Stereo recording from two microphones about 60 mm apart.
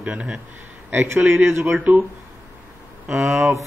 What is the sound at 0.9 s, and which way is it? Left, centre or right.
Speech, right.